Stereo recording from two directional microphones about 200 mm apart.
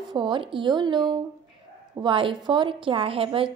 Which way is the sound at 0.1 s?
20° right (ahead or behind).